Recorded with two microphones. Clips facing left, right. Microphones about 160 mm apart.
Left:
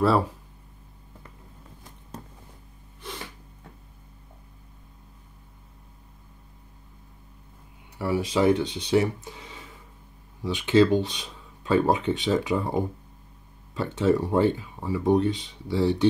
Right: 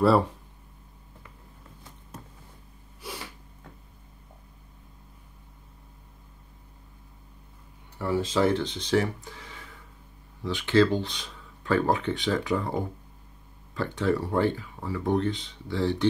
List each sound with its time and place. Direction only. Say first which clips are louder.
0.0 s speech: right 1 dB; centre (ahead or behind)
8.0 s speech: left 1 dB; 10° left (ahead or behind)